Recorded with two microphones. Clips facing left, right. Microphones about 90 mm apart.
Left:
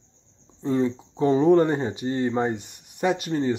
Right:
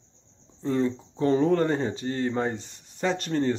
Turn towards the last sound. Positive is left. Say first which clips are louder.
# left 2 dB
turn(degrees=10)  # may be behind; listen again after turning